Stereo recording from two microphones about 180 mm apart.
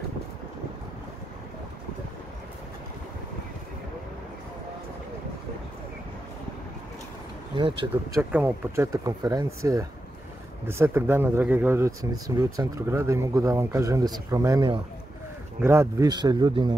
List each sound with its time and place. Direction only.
7.5 s a man's voice: 30° right (ahead or behind)
7.9 s a man's voice: 10° right (ahead or behind)